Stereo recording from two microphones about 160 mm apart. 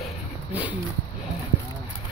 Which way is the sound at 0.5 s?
10° right (ahead or behind).